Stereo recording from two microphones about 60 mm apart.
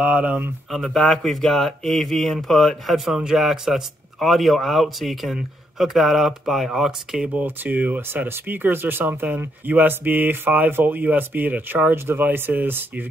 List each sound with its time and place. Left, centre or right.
0.0 s speech: right
0.7 s a man's voice: centre
3.3 s a man's voice: centre
7.3 s speech: right